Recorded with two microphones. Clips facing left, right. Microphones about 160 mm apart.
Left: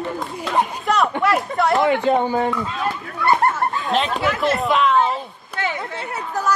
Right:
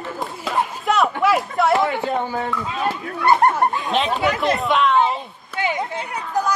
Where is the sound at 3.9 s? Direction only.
Centre (ahead or behind).